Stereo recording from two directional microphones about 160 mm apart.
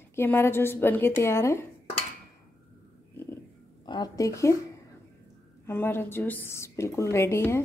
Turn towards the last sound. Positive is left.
turn(degrees=15)  # may be behind; listen again after turning